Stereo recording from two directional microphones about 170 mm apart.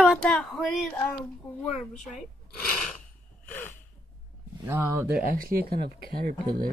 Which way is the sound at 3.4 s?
10° left (ahead or behind).